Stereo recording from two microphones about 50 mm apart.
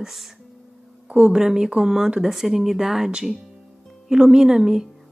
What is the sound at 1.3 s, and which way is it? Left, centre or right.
Speech, centre.